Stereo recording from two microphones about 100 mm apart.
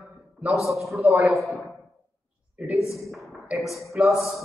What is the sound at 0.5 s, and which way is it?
A man's voice, centre (ahead or behind).